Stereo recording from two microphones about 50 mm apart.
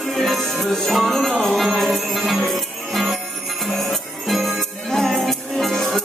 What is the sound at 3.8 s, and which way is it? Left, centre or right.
Music, centre.